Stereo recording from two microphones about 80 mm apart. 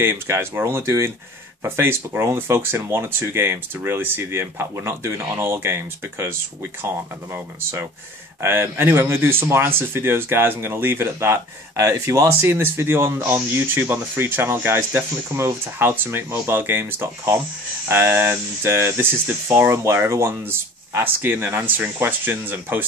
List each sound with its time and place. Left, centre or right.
0.0 s speech: right
8.4 s speech: right